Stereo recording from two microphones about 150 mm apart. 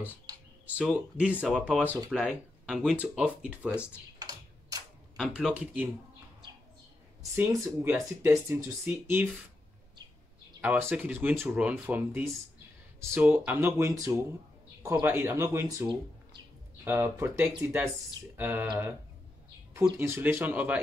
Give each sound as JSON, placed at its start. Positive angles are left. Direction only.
{"t": 0.7, "sound": "speech", "side_deg": -10}
{"t": 4.2, "sound": "typing", "side_deg": -25}
{"t": 5.1, "sound": "speech", "side_deg": 0}
{"t": 7.3, "sound": "speech", "side_deg": -15}
{"t": 10.6, "sound": "speech", "side_deg": -10}
{"t": 20.0, "sound": "speech", "side_deg": -15}